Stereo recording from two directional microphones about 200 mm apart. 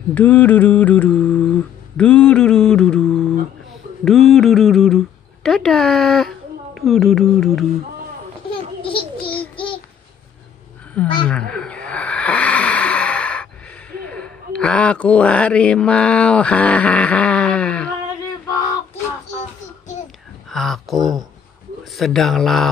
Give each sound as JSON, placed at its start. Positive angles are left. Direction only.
{"t": 0.1, "sound": "mantra", "side_deg": 10}
{"t": 4.0, "sound": "speech", "side_deg": 0}
{"t": 8.8, "sound": "babbling", "side_deg": 25}
{"t": 11.2, "sound": "a sound", "side_deg": 5}
{"t": 13.9, "sound": "a man's voice", "side_deg": 5}
{"t": 20.4, "sound": "speech", "side_deg": 0}
{"t": 21.9, "sound": "mantra", "side_deg": 0}